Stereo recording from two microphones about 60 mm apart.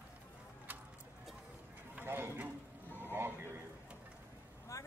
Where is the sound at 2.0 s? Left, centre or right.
Right.